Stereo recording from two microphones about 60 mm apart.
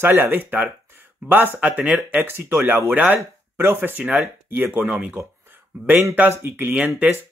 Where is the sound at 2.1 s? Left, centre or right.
Right.